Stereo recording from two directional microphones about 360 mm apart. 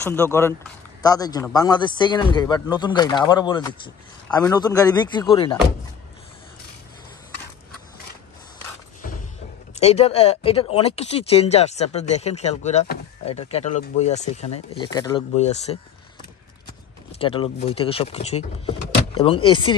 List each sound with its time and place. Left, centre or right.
0.0 s speech: centre
9.8 s speech: centre
17.1 s speech: centre